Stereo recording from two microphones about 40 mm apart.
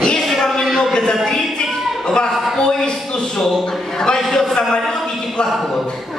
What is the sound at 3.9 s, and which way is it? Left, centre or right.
A man's voice, centre.